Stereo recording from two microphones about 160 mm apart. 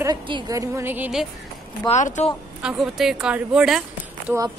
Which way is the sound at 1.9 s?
45° left (ahead or behind).